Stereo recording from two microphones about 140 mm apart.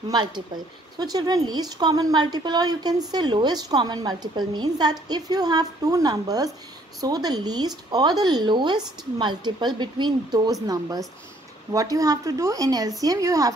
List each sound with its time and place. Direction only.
0.1 s speech: 30° right (ahead or behind)